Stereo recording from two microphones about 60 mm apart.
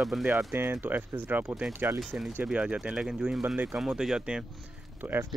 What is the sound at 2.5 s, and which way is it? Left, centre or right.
Speech, centre.